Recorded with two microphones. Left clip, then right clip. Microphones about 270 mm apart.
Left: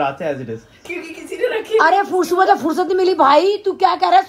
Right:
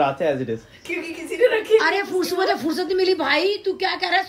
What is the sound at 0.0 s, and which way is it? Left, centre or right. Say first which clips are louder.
Speech: even; left.